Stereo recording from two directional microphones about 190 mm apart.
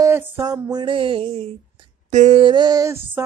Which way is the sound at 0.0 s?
15° right (ahead or behind).